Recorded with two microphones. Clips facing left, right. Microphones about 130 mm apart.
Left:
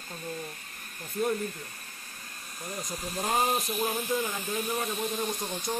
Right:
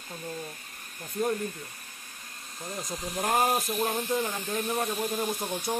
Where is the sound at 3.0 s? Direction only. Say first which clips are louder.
Right 2 dB; 15° right (ahead or behind).